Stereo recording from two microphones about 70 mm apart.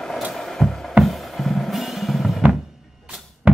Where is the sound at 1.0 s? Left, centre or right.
Centre.